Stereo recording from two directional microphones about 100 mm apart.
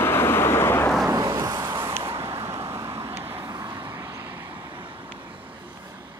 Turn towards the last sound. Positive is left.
turn(degrees=-60)  # may be behind; listen again after turning